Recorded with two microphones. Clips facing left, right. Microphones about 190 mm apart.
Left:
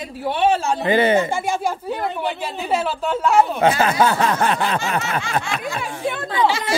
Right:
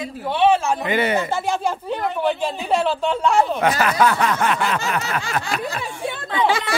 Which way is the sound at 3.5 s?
25° left (ahead or behind).